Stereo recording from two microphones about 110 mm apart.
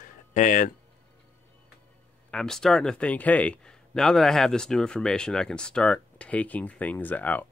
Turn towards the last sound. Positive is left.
turn(degrees=15)  # may be behind; listen again after turning